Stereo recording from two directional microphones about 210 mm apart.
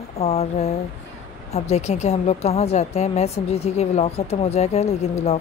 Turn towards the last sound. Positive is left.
turn(degrees=30)  # may be behind; listen again after turning